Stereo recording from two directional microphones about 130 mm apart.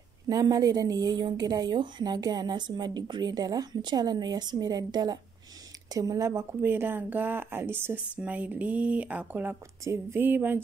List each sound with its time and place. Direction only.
0.3 s a woman's voice: 25° right (ahead or behind)